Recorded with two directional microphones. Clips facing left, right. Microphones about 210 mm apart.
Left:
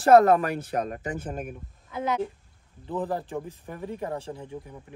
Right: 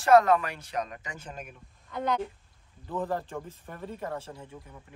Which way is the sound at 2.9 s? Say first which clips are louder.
Left 2 dB; 15° left (ahead or behind).